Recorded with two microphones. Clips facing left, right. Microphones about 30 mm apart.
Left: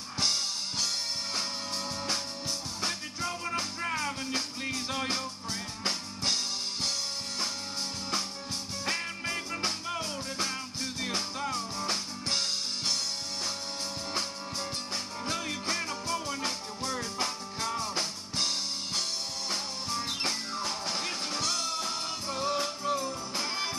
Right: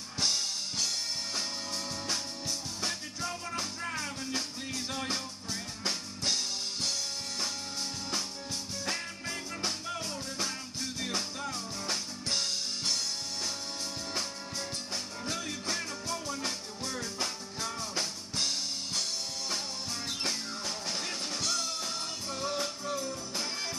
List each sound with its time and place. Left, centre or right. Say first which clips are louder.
0.2 s drum kit: left 1 dB; centre
2.8 s music: left 3 dB; centre
8.8 s music: left 5 dB; left
15.2 s music: left 3 dB; centre